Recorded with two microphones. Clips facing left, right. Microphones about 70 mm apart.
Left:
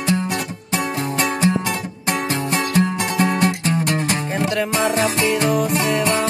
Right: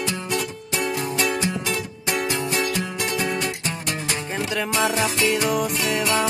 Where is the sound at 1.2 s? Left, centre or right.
Left.